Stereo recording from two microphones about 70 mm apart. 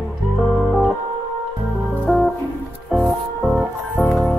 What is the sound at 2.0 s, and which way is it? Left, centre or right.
Music, centre.